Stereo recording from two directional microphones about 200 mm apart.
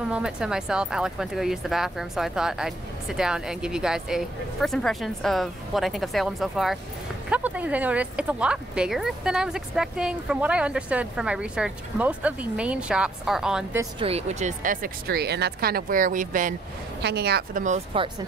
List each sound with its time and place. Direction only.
0.1 s speech: 5° right (ahead or behind)
13.9 s speech: 30° right (ahead or behind)
17.0 s a woman's voice: 55° right (ahead or behind)
17.6 s speech: 30° right (ahead or behind)